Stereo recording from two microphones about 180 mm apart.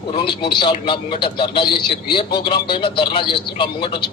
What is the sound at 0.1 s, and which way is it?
A man's voice, 25° left (ahead or behind).